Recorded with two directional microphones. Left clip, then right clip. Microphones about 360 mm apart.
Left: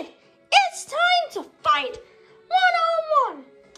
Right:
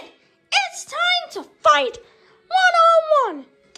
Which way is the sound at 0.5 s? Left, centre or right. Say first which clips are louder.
Left 3 dB; centre.